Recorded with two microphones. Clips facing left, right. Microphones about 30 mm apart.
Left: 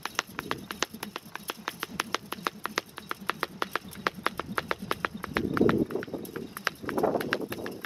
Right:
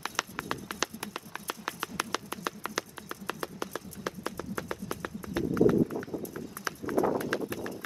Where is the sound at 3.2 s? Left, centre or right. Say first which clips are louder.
Left 4 dB; left.